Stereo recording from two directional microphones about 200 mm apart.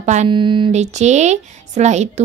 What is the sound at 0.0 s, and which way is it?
Speech, 35° right (ahead or behind).